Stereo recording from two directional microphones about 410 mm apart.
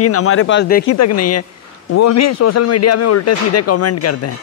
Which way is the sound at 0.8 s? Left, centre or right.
Left.